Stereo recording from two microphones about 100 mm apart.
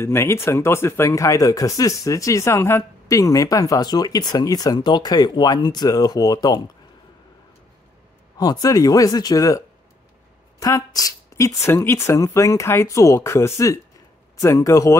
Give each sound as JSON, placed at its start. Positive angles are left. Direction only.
{"t": 0.0, "sound": "speech", "side_deg": 25}
{"t": 8.4, "sound": "speech", "side_deg": 40}
{"t": 10.6, "sound": "a woman's voice", "side_deg": 35}